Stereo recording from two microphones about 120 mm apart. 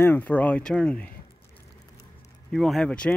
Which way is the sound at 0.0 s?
15° left (ahead or behind).